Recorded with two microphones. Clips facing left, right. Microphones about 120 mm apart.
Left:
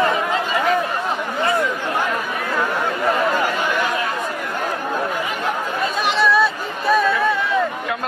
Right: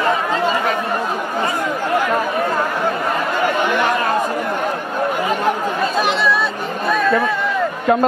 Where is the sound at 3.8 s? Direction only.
45° right (ahead or behind).